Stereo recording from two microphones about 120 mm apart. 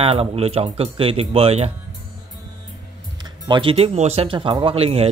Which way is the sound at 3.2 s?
40° right (ahead or behind).